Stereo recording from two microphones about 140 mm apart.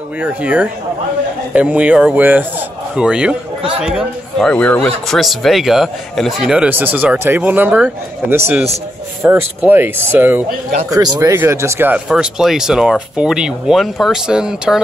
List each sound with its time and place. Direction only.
0.2 s speech: 10° right (ahead or behind)
4.5 s speech: 10° left (ahead or behind)
5.0 s speech: centre (ahead or behind)
10.9 s speech: 25° right (ahead or behind)
12.1 s speech: 5° right (ahead or behind)